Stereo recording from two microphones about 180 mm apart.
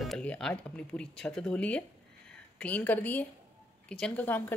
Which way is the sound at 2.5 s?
10° left (ahead or behind).